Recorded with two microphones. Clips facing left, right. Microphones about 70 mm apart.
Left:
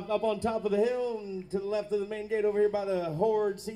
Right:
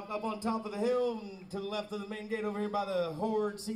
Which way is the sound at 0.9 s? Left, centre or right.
Right.